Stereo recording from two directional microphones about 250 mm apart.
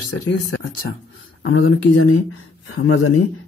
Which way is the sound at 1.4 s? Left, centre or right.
Left.